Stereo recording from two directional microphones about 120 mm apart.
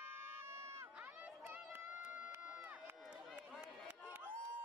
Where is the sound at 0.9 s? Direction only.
10° right (ahead or behind).